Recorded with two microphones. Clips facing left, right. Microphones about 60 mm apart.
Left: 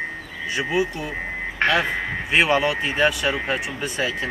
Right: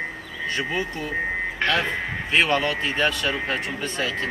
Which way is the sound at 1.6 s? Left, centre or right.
Left.